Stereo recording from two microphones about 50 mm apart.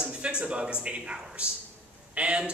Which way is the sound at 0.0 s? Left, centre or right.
Centre.